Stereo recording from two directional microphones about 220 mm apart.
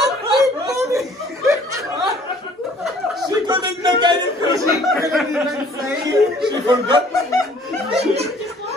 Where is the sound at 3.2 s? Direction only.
20° right (ahead or behind).